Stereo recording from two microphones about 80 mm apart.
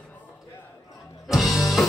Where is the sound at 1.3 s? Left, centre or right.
Centre.